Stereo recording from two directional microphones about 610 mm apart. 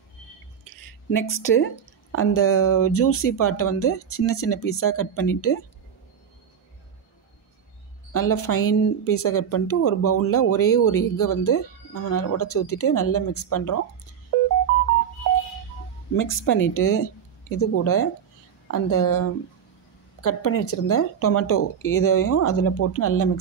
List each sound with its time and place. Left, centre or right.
0.7 s a sound: centre
2.1 s speech: left
8.1 s speech: left
16.2 s speech: centre